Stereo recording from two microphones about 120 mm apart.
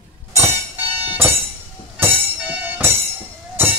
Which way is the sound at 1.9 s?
10° right (ahead or behind).